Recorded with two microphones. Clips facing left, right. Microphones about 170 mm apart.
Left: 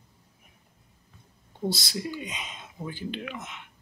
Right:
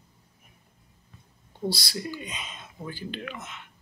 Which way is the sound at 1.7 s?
20° left (ahead or behind).